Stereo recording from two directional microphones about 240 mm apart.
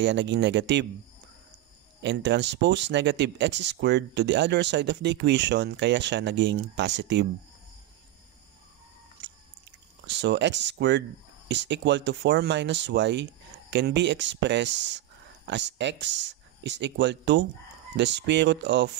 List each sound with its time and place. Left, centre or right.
0.0 s speech: right
2.0 s speech: right
10.0 s speech: right